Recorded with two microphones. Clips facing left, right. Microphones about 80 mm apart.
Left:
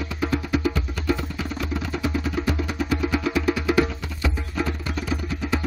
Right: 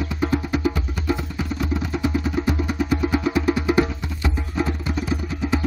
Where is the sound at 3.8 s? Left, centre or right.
Centre.